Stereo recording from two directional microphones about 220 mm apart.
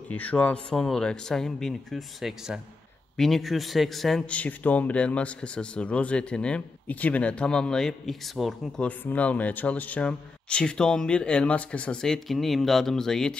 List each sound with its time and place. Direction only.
0.1 s speech: 5° left (ahead or behind)